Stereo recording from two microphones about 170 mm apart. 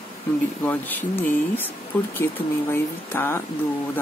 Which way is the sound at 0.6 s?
10° left (ahead or behind).